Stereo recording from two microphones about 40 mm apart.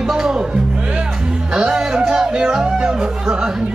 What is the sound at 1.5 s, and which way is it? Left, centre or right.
Speech, centre.